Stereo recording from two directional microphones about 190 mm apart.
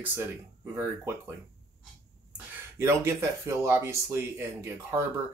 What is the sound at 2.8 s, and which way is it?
Speech, 15° right (ahead or behind).